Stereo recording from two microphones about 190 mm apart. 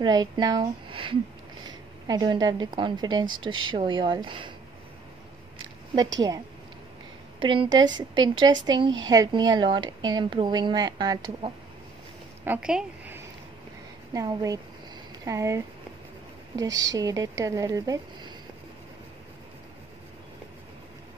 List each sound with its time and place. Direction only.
0.0 s a woman's voice: 20° right (ahead or behind)
7.3 s a woman's voice: 25° right (ahead or behind)
12.4 s a woman's voice: 5° right (ahead or behind)